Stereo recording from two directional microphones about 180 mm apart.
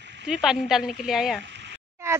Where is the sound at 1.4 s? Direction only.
75° right (ahead or behind).